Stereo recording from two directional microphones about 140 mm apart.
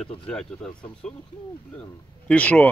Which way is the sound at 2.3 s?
10° left (ahead or behind).